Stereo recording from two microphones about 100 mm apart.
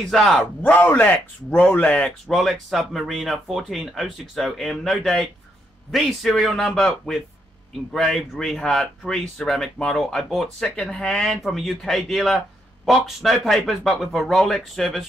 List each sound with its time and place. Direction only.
0.1 s speech: centre (ahead or behind)
0.4 s speech: 15° left (ahead or behind)
2.2 s speech: centre (ahead or behind)